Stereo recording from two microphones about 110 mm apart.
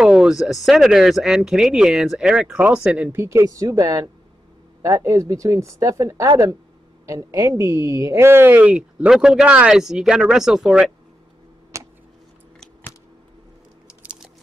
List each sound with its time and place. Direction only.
0.0 s speech: 10° right (ahead or behind)
3.2 s speech: 25° right (ahead or behind); by 10.9 s 5° right (ahead or behind)
11.7 s a sound: 30° right (ahead or behind)
13.8 s crunch: 5° right (ahead or behind)